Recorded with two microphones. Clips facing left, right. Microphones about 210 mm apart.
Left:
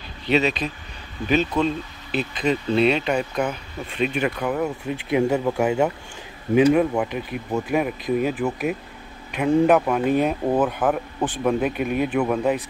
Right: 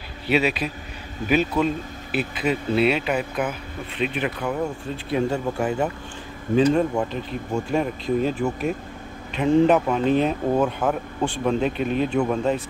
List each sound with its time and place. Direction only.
0.3 s speech: 10° right (ahead or behind)
4.0 s speech: 45° left (ahead or behind)
4.4 s speech: 15° left (ahead or behind)